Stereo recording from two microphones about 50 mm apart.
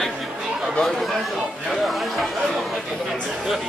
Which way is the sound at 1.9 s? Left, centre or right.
Centre.